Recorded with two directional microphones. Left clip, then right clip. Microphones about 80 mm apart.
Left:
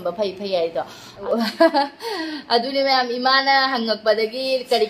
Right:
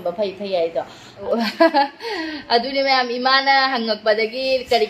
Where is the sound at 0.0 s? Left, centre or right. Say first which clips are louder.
Right 1 dB; left.